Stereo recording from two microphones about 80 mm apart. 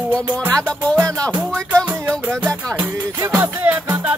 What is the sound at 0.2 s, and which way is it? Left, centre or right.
Music, right.